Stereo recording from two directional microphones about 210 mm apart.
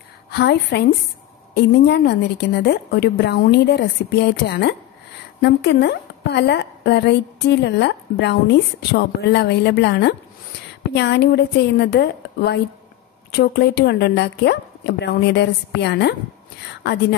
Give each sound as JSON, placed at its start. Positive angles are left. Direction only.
{"t": 0.3, "sound": "a woman's voice", "side_deg": 50}